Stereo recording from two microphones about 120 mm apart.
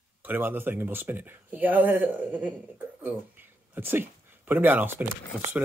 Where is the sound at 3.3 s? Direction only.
15° right (ahead or behind).